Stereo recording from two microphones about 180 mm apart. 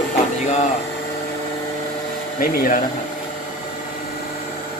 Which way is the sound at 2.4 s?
55° left (ahead or behind).